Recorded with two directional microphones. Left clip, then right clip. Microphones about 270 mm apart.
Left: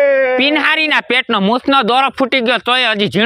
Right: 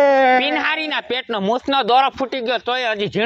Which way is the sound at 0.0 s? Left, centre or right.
Centre.